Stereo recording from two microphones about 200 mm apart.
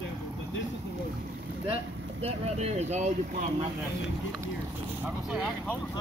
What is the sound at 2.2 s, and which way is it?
Speech, 30° right (ahead or behind).